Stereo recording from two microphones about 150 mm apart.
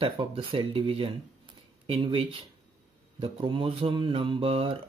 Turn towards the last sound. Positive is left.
turn(degrees=-40)  # may be behind; listen again after turning